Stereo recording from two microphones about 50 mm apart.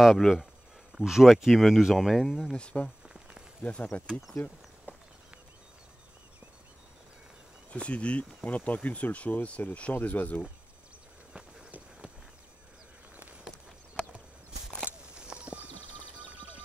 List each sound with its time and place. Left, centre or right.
0.0 s speech: centre
2.5 s speech: left
3.0 s a sound: centre
3.6 s speech: left
7.7 s speech: left
15.1 s a sound: centre